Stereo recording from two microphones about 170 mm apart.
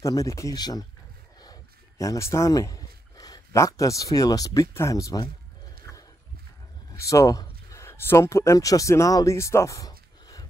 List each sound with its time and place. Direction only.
0.0 s speech: 20° left (ahead or behind)
5.9 s horse: 15° left (ahead or behind)
7.0 s speech: 20° left (ahead or behind)